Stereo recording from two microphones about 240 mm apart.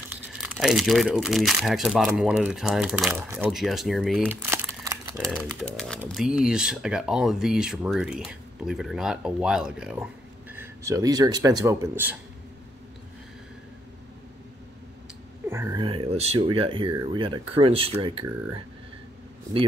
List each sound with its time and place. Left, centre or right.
0.4 s speech: centre
5.3 s a man's voice: centre
15.5 s a sound: centre
16.9 s speech: centre